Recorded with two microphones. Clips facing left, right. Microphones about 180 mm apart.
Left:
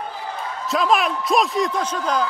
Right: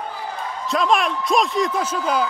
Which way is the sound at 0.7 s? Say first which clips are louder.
Even; centre (ahead or behind).